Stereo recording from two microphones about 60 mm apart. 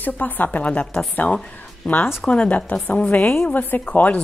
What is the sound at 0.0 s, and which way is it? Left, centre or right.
A woman's voice, left.